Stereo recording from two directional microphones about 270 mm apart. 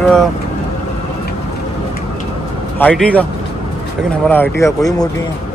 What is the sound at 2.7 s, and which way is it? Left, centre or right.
A man's voice, centre.